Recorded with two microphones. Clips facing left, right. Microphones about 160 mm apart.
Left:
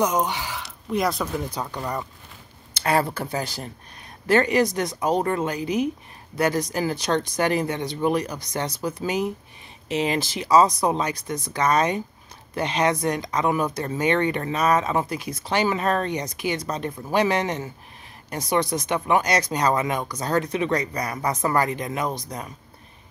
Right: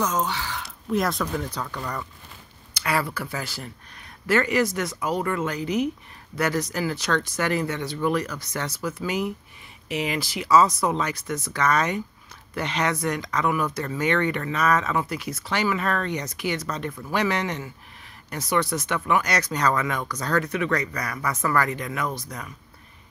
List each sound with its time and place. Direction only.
0.0 s speech: 15° left (ahead or behind)
0.6 s a sound: centre (ahead or behind)
1.2 s speech: 15° left (ahead or behind)
1.6 s speech: 25° left (ahead or behind)
2.8 s speech: 45° left (ahead or behind)
3.1 s speech: 25° left (ahead or behind)
11.6 s speech: 30° left (ahead or behind)
21.5 s speech: 20° left (ahead or behind)